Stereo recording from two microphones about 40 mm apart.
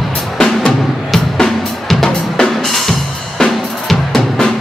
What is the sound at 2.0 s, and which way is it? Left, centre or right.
Drum, centre.